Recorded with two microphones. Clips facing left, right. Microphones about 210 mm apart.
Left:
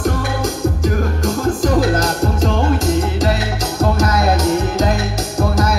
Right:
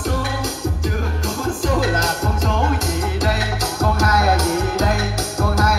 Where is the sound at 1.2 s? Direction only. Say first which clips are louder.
Left 5 dB; 40° left (ahead or behind).